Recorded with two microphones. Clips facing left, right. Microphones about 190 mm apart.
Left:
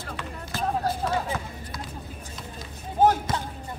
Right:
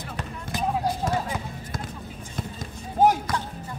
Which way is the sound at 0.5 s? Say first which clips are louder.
Right 1 dB; 15° right (ahead or behind).